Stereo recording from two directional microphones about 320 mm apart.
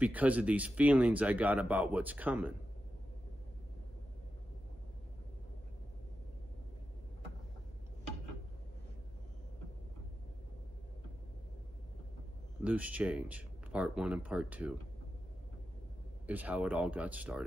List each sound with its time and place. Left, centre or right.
0.0 s speech: centre
12.6 s speech: centre
16.3 s speech: centre